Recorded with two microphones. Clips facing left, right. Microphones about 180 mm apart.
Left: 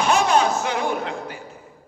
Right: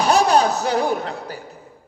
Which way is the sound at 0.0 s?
35° right (ahead or behind).